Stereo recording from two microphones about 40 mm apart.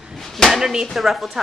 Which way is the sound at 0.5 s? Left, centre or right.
Centre.